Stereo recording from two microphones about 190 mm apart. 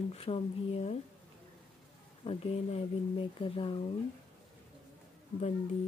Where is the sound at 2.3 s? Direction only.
30° left (ahead or behind).